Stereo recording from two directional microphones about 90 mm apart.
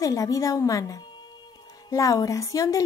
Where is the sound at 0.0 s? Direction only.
40° left (ahead or behind).